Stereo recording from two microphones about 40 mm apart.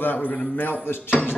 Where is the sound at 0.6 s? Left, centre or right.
Left.